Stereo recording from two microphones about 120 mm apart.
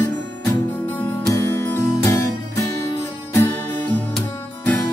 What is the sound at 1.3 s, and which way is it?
Music, 20° left (ahead or behind).